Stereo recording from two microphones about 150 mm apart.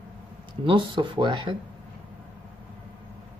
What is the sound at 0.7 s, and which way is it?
Speech, 35° right (ahead or behind).